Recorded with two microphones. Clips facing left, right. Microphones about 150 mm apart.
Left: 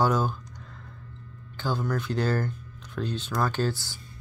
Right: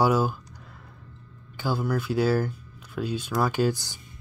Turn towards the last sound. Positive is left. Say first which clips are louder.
# right 3 dB
turn(degrees=-15)  # may be behind; listen again after turning